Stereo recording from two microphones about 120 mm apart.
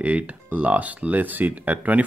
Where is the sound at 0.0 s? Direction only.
10° right (ahead or behind).